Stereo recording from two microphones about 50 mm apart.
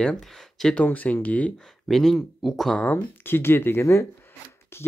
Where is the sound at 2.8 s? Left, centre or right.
Left.